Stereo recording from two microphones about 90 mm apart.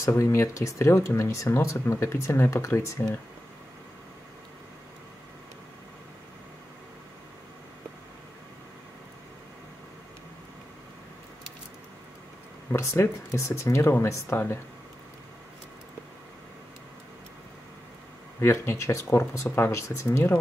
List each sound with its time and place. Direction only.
0.2 s speech: 35° left (ahead or behind)
12.7 s speech: 30° left (ahead or behind)
18.4 s speech: 30° left (ahead or behind)